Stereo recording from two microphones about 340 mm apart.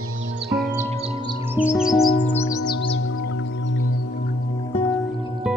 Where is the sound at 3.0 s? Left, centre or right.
Left.